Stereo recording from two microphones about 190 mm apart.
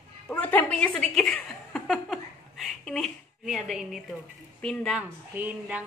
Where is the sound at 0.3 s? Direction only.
10° left (ahead or behind).